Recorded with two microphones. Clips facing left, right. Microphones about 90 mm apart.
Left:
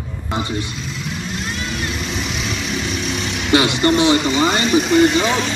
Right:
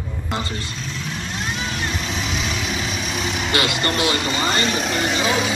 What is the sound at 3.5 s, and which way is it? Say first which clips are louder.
Speech: left 8 dB; 20° left (ahead or behind).